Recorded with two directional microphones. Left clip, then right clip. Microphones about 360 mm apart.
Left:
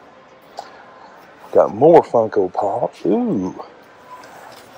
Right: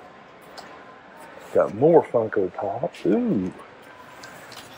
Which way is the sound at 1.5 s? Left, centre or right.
Centre.